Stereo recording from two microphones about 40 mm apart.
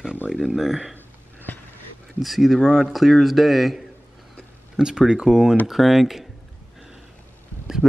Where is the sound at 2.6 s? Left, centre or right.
Centre.